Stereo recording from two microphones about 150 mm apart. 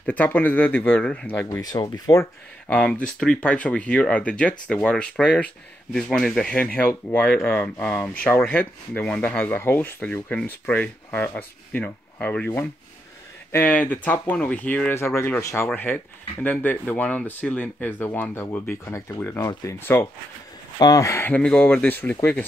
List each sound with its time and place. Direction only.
0.0 s speech: 10° left (ahead or behind)
1.6 s speech: 25° left (ahead or behind)
2.7 s speech: 5° left (ahead or behind)